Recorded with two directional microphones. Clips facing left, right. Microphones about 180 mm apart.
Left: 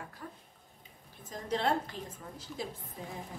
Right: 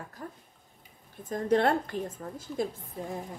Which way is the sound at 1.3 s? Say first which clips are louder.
Right 7 dB; 55° right (ahead or behind).